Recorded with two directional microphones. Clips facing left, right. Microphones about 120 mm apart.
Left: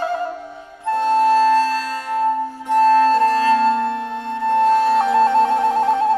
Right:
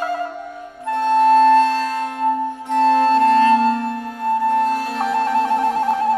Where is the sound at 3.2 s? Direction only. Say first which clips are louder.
Right 2 dB; 35° left (ahead or behind).